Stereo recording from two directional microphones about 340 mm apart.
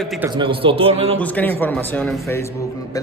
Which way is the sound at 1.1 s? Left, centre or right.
Centre.